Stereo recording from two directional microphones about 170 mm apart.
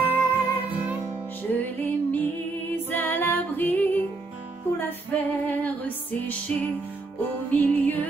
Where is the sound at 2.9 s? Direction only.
10° left (ahead or behind).